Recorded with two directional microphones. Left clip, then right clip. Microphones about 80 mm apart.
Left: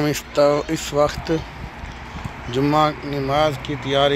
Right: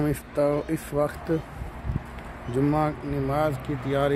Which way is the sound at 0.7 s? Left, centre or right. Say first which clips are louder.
Left 7 dB; centre.